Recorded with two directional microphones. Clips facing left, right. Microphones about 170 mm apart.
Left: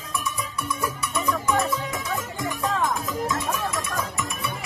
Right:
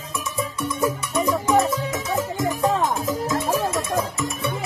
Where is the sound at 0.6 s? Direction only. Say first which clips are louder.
Right 6 dB; 25° right (ahead or behind).